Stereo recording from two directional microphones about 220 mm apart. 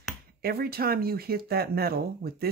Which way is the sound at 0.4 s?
45° right (ahead or behind).